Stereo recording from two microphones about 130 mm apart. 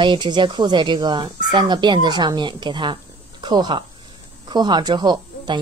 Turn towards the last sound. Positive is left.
turn(degrees=-35)  # may be behind; listen again after turning